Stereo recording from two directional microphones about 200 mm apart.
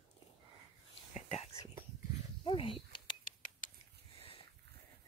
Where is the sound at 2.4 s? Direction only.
25° left (ahead or behind).